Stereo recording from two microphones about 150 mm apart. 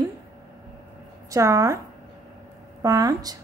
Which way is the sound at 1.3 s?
20° right (ahead or behind).